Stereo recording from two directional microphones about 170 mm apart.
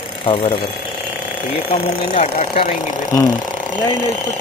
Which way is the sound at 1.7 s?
40° left (ahead or behind).